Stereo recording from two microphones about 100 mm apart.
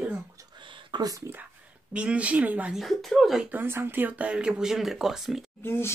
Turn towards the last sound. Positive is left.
turn(degrees=25)  # may be behind; listen again after turning